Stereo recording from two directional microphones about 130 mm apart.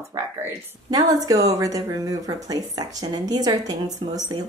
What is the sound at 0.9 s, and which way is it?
Speech, 30° right (ahead or behind).